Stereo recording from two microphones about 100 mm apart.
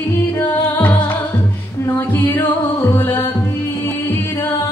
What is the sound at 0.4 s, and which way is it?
Music, 20° left (ahead or behind).